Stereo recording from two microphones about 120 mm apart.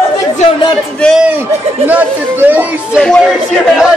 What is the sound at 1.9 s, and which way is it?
Speech, 15° right (ahead or behind).